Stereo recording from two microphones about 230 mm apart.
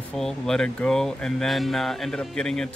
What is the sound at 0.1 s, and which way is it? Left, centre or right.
Speech, centre.